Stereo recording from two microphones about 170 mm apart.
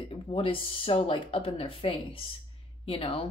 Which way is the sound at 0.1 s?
30° left (ahead or behind).